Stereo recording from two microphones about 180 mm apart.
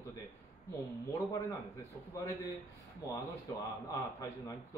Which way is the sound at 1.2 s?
20° left (ahead or behind).